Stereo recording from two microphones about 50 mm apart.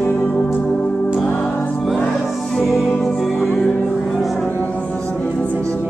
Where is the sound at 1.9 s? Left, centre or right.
Centre.